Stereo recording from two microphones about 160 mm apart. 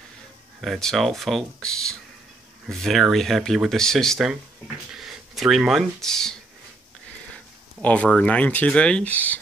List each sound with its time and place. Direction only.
0.6 s speech: centre (ahead or behind)
7.8 s speech: 5° left (ahead or behind)